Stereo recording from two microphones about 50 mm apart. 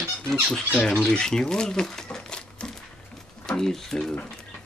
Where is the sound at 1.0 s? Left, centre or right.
Centre.